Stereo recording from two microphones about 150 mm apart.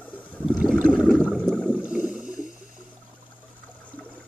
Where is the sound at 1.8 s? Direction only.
5° right (ahead or behind).